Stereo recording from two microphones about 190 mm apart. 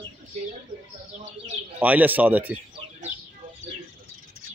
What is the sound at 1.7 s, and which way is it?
Speech, 10° right (ahead or behind).